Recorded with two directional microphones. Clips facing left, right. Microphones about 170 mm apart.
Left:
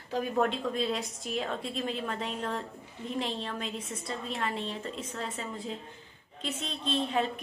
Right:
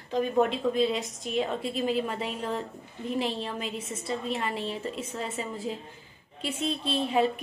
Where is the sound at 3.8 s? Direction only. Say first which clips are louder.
Right 3 dB; 25° right (ahead or behind).